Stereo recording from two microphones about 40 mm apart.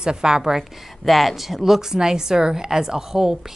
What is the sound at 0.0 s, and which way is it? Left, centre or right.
Speech, centre.